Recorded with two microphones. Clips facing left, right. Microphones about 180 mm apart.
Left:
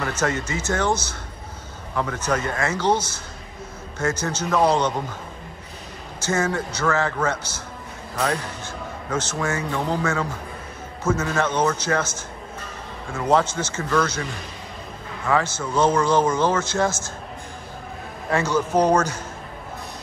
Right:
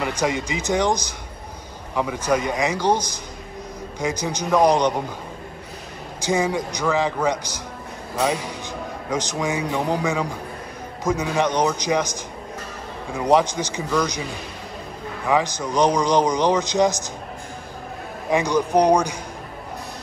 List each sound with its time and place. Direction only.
0.0 s a man's voice: 15° right (ahead or behind)
6.2 s a man's voice: 15° right (ahead or behind)
15.2 s a man's voice: 15° right (ahead or behind)
18.3 s a man's voice: 15° right (ahead or behind)